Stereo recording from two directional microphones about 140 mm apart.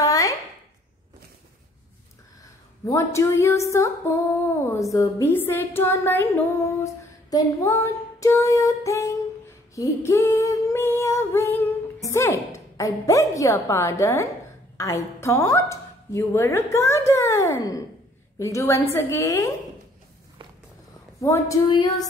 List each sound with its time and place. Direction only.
0.0 s a sound: 25° left (ahead or behind)
2.9 s a woman's voice: 20° left (ahead or behind)
21.2 s a woman's voice: 20° left (ahead or behind)
21.6 s music: 30° left (ahead or behind)